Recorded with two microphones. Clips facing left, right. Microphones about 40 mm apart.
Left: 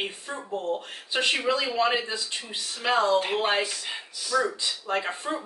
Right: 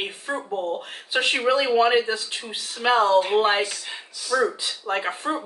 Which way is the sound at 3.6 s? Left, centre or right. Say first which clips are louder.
Right 2 dB; centre.